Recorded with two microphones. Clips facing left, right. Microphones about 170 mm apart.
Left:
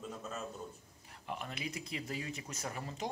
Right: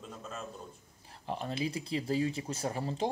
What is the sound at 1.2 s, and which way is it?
Speech, 30° right (ahead or behind).